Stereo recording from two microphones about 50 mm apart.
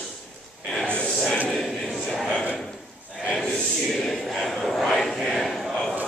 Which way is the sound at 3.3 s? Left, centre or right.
Centre.